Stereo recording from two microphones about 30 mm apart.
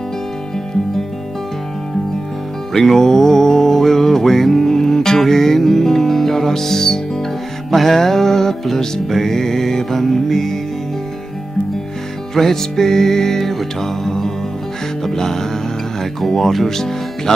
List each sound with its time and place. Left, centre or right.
2.7 s music: centre
12.4 s music: centre